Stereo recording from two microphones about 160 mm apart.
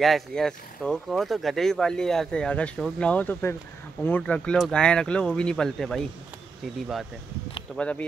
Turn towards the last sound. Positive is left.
turn(degrees=5)  # may be behind; listen again after turning